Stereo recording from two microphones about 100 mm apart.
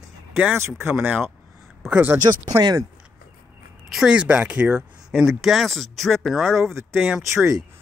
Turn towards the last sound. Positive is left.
turn(degrees=-30)  # may be behind; listen again after turning